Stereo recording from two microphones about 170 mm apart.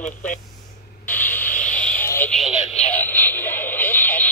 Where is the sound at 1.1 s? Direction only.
10° left (ahead or behind).